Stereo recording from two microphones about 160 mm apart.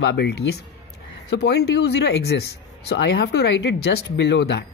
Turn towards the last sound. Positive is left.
turn(degrees=90)